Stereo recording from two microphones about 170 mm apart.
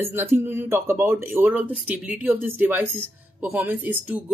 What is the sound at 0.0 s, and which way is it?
Speech, 15° right (ahead or behind).